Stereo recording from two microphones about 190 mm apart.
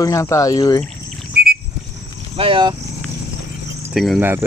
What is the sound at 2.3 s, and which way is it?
Speech, 30° right (ahead or behind).